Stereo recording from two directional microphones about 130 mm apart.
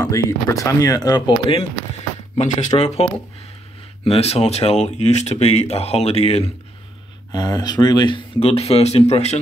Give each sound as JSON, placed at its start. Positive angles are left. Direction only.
{"t": 0.0, "sound": "speech", "side_deg": 25}
{"t": 2.3, "sound": "speech", "side_deg": 70}
{"t": 7.3, "sound": "speech", "side_deg": 30}
{"t": 8.4, "sound": "speech", "side_deg": 50}